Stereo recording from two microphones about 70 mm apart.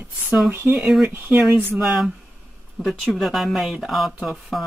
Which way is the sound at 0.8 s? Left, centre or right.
Centre.